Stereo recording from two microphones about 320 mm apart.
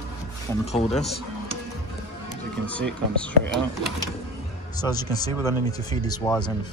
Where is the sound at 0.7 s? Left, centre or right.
Centre.